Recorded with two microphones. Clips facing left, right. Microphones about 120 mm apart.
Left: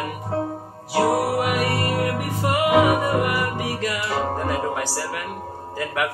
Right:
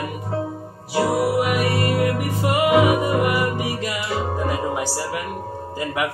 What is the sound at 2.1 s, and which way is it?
Music, 15° right (ahead or behind).